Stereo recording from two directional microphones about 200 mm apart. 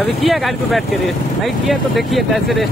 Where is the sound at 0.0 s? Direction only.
Centre (ahead or behind).